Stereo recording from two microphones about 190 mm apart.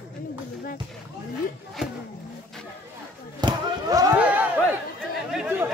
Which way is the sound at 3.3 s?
20° right (ahead or behind).